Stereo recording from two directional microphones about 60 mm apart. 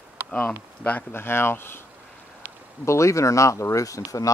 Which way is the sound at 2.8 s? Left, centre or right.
Left.